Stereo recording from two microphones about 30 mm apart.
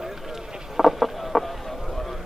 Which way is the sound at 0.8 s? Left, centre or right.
Centre.